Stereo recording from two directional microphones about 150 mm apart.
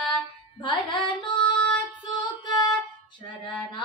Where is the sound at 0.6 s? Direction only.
30° left (ahead or behind).